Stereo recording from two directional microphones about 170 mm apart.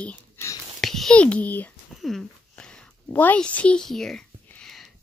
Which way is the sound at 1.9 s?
Centre (ahead or behind).